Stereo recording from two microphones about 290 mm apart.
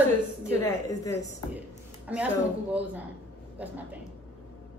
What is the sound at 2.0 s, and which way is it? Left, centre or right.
A woman's voice, centre.